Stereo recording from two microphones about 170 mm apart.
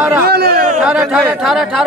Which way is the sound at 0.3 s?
65° right (ahead or behind).